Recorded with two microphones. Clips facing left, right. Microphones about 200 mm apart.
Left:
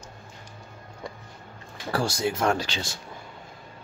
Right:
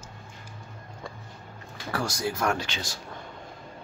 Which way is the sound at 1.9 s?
30° left (ahead or behind).